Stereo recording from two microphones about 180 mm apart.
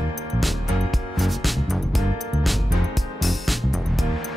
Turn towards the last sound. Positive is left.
turn(degrees=0)  # may be behind; listen again after turning